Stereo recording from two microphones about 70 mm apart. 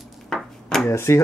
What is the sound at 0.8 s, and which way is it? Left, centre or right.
Speech, left.